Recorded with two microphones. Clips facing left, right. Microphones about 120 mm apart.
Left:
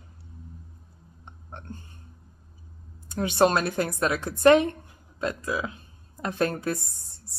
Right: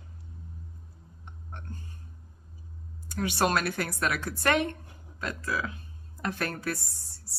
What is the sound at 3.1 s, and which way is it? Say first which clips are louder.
A woman's voice: left 5 dB; 25° left (ahead or behind).